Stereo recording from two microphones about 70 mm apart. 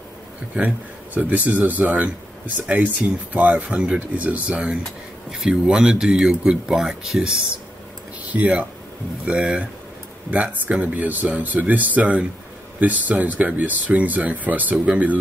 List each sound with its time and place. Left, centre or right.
0.6 s speech: right